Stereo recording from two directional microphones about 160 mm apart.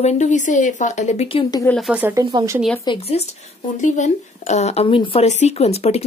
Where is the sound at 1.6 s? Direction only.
Centre (ahead or behind).